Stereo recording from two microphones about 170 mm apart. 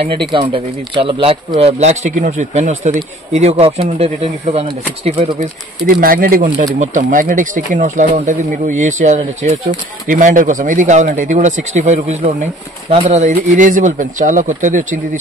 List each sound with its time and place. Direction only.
0.2 s a man's voice: 30° right (ahead or behind)
5.9 s speech: 55° right (ahead or behind)